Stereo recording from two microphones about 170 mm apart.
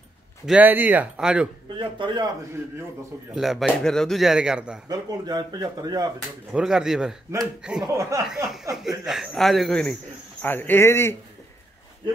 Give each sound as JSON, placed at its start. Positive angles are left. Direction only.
{"t": 0.5, "sound": "speech", "side_deg": -10}
{"t": 1.8, "sound": "speech", "side_deg": -25}
{"t": 3.3, "sound": "speech", "side_deg": 0}
{"t": 4.8, "sound": "speech", "side_deg": -25}
{"t": 6.5, "sound": "speech", "side_deg": -5}
{"t": 7.8, "sound": "speech", "side_deg": -20}
{"t": 8.7, "sound": "speech", "side_deg": 0}